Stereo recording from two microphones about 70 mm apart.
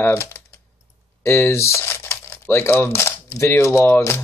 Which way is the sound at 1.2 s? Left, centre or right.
Left.